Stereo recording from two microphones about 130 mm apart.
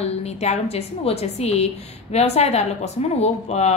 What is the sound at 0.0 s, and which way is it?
A woman's voice, 55° left (ahead or behind).